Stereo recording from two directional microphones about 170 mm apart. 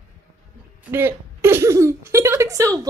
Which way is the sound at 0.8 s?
15° right (ahead or behind).